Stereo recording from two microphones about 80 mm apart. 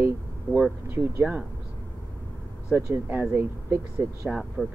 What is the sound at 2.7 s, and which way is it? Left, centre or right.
Speech, right.